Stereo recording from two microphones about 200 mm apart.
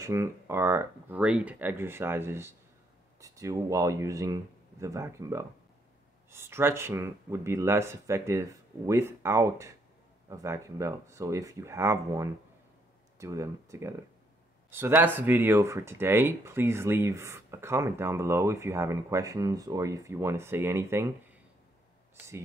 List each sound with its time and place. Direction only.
0.0 s speech: 15° right (ahead or behind)